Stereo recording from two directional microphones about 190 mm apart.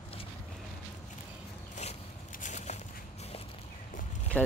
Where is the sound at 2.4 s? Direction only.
35° left (ahead or behind).